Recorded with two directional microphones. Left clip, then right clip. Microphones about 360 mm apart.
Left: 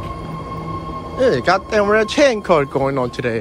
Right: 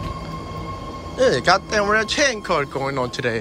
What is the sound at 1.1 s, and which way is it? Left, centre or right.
Speech, centre.